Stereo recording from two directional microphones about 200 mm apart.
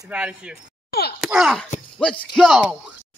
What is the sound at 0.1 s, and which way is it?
Speech, 5° right (ahead or behind).